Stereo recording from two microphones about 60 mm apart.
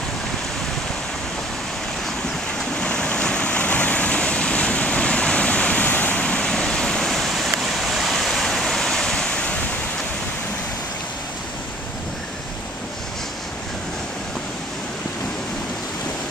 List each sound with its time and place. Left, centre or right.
2.8 s vehicle: centre